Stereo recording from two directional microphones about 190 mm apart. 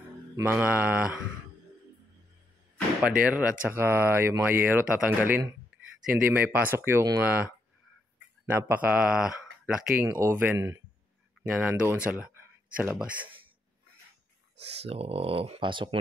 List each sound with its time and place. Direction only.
0.4 s speech: 10° right (ahead or behind)
3.0 s speech: 5° right (ahead or behind)
8.5 s speech: 10° right (ahead or behind)
10.0 s speech: 15° right (ahead or behind)
14.8 s speech: 30° right (ahead or behind)